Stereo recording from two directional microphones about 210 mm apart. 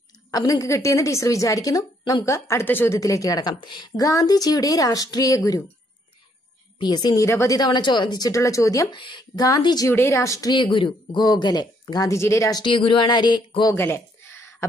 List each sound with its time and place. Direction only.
0.3 s a woman's voice: 15° left (ahead or behind)
6.8 s a woman's voice: 20° left (ahead or behind)